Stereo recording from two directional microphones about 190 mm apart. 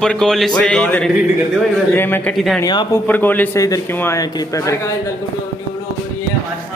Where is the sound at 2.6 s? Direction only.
20° left (ahead or behind).